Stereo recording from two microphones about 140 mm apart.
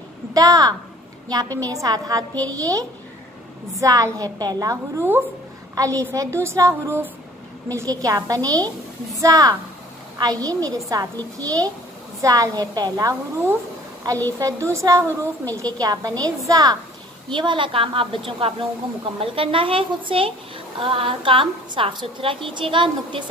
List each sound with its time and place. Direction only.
0.3 s a woman's voice: 25° right (ahead or behind)
17.3 s a woman's voice: 35° right (ahead or behind)